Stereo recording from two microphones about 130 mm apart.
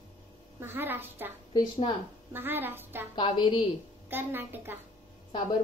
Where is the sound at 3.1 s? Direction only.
40° left (ahead or behind).